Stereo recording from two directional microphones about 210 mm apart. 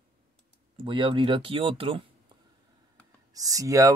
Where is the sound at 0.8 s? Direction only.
25° right (ahead or behind).